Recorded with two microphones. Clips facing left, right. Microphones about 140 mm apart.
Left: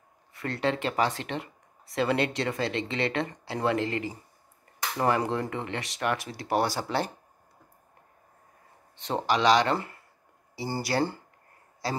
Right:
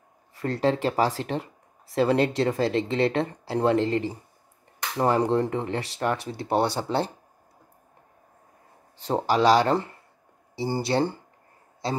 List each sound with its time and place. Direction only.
0.4 s speech: 40° right (ahead or behind)
8.9 s speech: 40° right (ahead or behind)
10.8 s speech: 25° right (ahead or behind)